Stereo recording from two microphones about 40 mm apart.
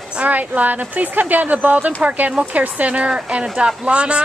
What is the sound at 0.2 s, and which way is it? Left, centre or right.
Speech, right.